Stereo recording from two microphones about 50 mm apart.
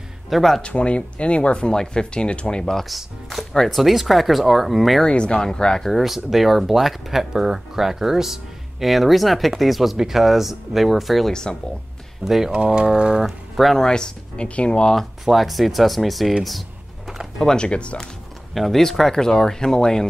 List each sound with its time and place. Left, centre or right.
0.3 s speech: centre
0.6 s speech: left; by 5.0 s centre
5.0 s speech: left
5.9 s speech: centre
12.4 s speech: centre
13.2 s speech: centre
13.7 s speech: centre
15.2 s speech: centre
17.4 s speech: centre
17.6 s speech: left
18.5 s speech: centre